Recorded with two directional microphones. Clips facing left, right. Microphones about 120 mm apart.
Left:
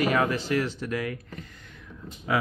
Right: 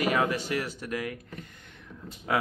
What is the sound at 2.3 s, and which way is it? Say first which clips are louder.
Speech: left 1 dB; 50° right (ahead or behind).